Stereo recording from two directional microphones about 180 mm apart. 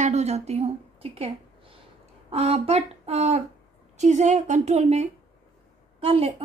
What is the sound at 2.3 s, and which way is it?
A child's voice, 35° right (ahead or behind).